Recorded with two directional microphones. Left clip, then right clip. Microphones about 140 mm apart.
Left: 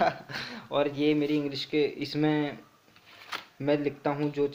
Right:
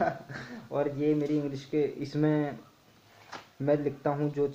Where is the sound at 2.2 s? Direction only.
5° left (ahead or behind).